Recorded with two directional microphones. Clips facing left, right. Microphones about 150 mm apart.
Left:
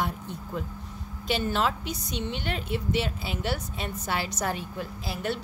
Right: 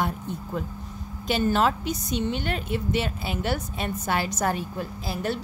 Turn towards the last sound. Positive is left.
turn(degrees=-40)  # may be behind; listen again after turning